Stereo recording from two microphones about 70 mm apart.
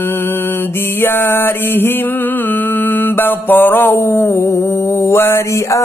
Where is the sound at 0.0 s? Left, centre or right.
Left.